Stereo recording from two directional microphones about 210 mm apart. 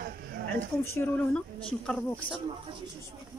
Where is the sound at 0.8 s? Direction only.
10° left (ahead or behind).